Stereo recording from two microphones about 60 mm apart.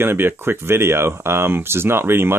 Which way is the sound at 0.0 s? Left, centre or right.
Right.